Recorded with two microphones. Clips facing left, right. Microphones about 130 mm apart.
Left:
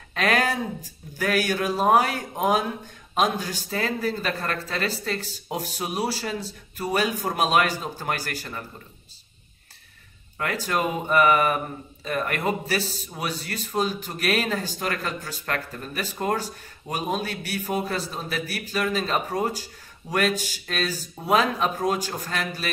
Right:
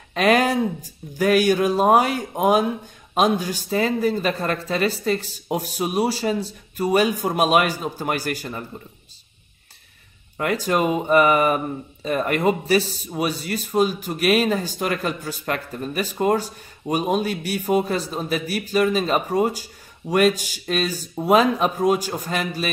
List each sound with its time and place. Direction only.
0.1 s speech: 20° right (ahead or behind)
10.3 s speech: 20° right (ahead or behind)